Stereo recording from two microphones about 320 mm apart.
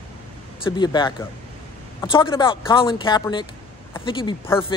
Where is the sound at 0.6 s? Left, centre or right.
Centre.